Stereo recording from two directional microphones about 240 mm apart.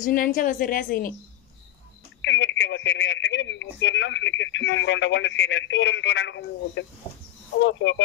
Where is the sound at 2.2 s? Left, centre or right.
Left.